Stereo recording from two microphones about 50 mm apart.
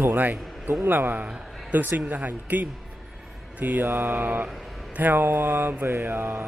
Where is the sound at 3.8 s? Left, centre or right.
Right.